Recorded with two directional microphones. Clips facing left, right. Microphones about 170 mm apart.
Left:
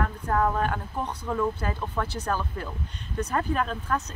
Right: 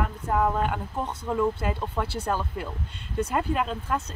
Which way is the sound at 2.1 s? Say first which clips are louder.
Right 1 dB; 25° right (ahead or behind).